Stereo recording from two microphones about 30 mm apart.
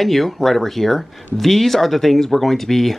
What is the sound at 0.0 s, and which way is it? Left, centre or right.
Speech, centre.